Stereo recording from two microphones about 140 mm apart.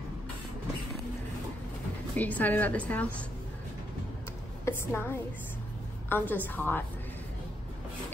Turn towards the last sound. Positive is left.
turn(degrees=15)  # may be behind; listen again after turning